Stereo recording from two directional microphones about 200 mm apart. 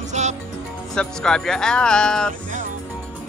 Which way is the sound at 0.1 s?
35° right (ahead or behind).